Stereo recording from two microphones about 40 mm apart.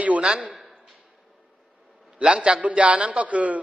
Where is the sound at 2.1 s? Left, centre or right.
Right.